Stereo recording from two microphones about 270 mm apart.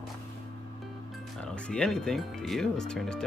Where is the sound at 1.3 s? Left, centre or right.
Centre.